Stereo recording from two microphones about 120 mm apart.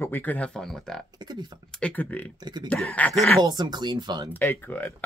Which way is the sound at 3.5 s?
35° right (ahead or behind).